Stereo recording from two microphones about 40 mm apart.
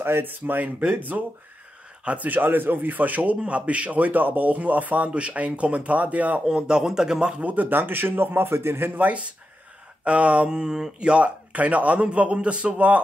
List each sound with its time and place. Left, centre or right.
0.0 s speech: right
3.3 s speech: right
6.5 s speech: right
7.4 s a man's voice: right
8.9 s speech: right
10.5 s speech: centre; by 13.0 s right